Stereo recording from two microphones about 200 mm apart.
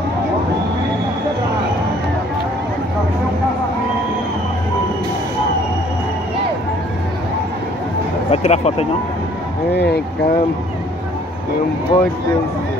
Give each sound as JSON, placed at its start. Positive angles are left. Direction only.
{"t": 8.3, "sound": "speech", "side_deg": 35}
{"t": 9.8, "sound": "speech", "side_deg": 55}
{"t": 11.9, "sound": "speech", "side_deg": 25}